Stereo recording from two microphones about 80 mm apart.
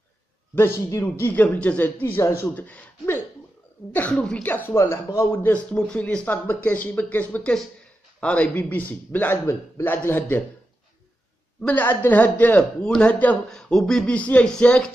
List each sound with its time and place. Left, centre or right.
1.0 s speech: left
4.7 s speech: left
11.6 s speech: left